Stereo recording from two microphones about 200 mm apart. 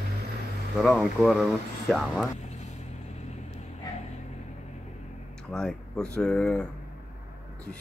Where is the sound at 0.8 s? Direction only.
Centre (ahead or behind).